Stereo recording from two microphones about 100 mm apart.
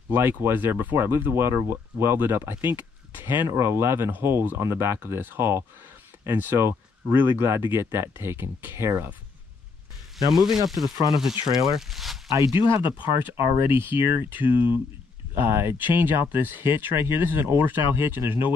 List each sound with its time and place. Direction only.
0.1 s speech: 25° right (ahead or behind)
10.3 s speech: 5° right (ahead or behind)
12.4 s speech: 50° left (ahead or behind)
13.1 s speech: 25° right (ahead or behind)